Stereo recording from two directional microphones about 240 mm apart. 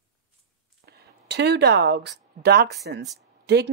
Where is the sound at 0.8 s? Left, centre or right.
Right.